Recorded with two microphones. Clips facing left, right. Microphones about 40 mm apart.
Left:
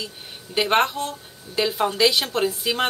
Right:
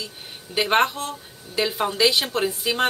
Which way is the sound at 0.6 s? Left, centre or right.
Centre.